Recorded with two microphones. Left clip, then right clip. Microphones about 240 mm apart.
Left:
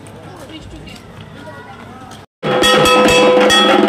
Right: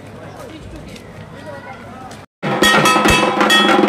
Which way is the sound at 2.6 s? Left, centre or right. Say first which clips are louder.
Left 2 dB; centre.